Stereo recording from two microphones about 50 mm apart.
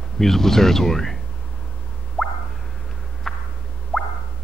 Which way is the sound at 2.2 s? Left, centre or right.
Centre.